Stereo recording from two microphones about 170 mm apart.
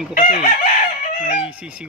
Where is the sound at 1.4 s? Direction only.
5° right (ahead or behind).